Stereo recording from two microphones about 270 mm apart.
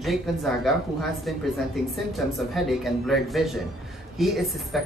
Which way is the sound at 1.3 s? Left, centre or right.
Centre.